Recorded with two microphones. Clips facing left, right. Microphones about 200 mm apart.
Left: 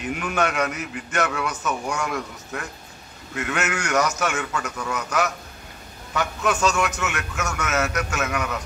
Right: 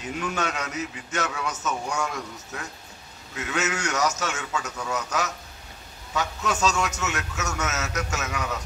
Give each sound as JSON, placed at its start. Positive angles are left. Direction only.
{"t": 0.0, "sound": "a man's voice", "side_deg": 60}